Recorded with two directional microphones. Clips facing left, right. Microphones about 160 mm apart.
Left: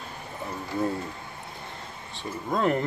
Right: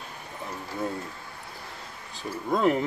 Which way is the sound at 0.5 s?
Centre (ahead or behind).